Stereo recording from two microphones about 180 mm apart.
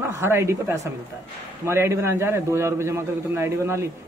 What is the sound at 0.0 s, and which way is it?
A man's voice, 15° right (ahead or behind).